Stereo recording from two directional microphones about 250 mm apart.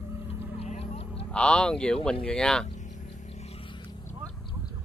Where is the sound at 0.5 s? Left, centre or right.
Left.